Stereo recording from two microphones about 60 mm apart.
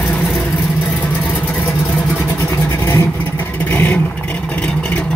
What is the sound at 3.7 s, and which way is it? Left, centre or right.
Vehicle, left.